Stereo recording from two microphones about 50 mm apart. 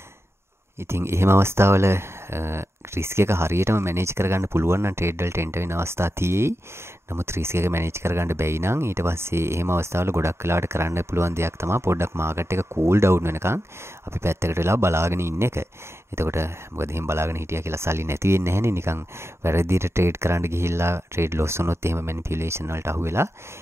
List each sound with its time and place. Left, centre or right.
0.7 s speech: right